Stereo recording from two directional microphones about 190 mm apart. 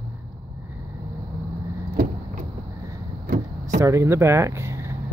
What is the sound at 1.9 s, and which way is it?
Vehicle, 55° right (ahead or behind).